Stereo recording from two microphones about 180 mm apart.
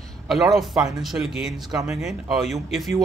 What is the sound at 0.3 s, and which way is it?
Speech, centre (ahead or behind).